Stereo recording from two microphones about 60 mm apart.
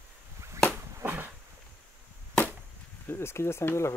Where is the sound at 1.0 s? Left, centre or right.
Right.